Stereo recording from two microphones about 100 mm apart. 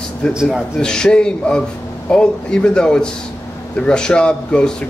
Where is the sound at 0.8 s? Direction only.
10° left (ahead or behind).